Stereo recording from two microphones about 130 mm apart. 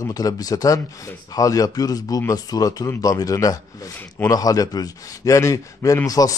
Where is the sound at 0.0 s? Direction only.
30° left (ahead or behind).